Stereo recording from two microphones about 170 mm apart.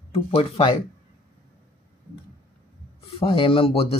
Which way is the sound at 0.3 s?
35° left (ahead or behind).